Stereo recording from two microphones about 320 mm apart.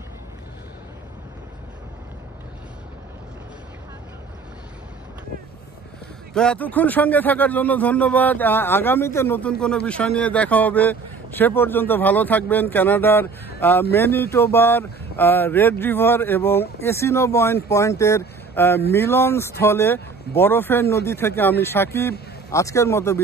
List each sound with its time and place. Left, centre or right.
6.3 s speech: centre